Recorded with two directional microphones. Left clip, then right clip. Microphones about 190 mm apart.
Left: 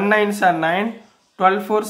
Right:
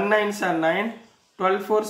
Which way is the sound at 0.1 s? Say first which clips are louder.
Left 9 dB; 35° left (ahead or behind).